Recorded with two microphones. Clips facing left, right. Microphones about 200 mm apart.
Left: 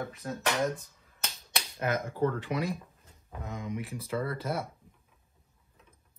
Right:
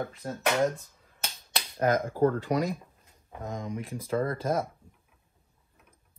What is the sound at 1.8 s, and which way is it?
Speech, 35° right (ahead or behind).